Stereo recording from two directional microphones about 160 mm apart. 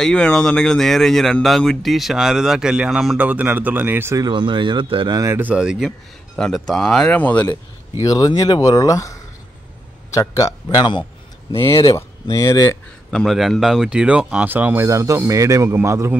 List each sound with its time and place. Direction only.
0.0 s speech: 5° left (ahead or behind)
8.0 s speech: 20° left (ahead or behind)
13.1 s speech: centre (ahead or behind); by 16.2 s 15° right (ahead or behind)